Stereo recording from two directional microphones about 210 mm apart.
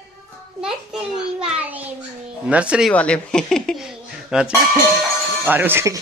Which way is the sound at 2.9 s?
5° left (ahead or behind).